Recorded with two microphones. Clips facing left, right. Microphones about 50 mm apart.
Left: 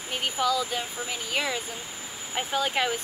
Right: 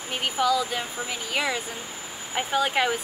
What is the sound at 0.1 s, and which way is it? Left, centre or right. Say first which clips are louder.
Speech: right 3 dB; centre.